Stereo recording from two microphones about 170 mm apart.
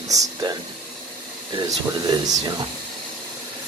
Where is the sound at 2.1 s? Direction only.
25° right (ahead or behind).